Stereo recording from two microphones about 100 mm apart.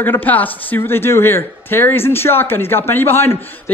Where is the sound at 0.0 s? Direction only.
20° left (ahead or behind).